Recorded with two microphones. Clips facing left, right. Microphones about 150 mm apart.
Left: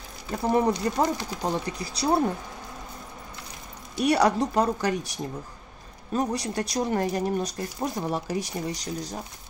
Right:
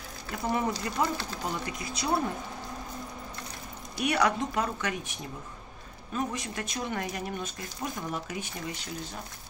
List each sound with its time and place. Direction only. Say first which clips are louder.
0.4 s speech: left 7 dB; 35° left (ahead or behind)
4.0 s speech: left 5 dB; 35° left (ahead or behind)